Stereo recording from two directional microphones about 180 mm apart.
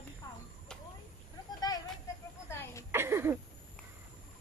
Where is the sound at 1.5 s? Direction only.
20° left (ahead or behind).